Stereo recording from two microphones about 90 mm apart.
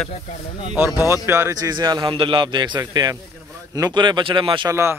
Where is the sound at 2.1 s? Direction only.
70° right (ahead or behind).